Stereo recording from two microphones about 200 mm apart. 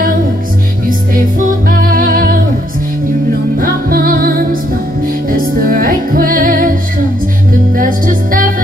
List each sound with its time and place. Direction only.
0.8 s music: 45° right (ahead or behind)
3.5 s music: 45° right (ahead or behind)